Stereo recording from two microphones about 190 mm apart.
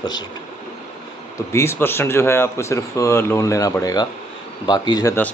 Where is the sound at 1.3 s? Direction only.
15° left (ahead or behind).